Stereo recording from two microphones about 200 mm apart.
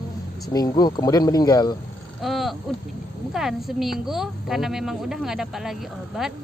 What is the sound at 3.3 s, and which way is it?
Speech, centre (ahead or behind).